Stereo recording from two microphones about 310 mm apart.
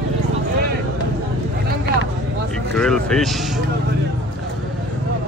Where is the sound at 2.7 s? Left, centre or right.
Centre.